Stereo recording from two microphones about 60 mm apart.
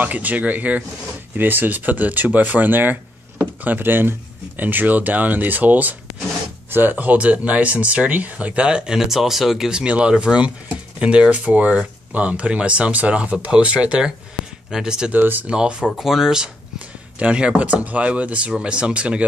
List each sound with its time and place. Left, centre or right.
0.0 s speech: right
3.3 s a sound: right
4.6 s speech: right; by 15.1 s centre
15.1 s speech: right
15.4 s speech: centre